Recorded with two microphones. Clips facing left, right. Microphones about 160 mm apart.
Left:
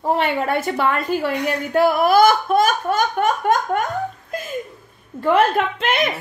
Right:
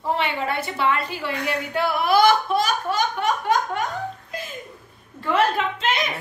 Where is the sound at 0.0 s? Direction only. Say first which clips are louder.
Left 5 dB; 45° left (ahead or behind).